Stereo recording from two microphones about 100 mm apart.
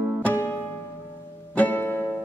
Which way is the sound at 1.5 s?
20° left (ahead or behind).